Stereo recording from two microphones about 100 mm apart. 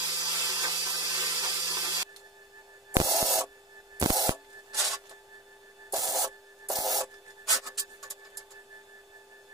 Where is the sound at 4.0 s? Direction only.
40° right (ahead or behind).